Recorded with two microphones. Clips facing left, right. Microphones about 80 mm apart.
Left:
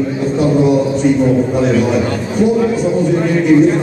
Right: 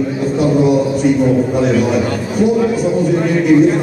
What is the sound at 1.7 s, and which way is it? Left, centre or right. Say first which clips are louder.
Speech: even; left.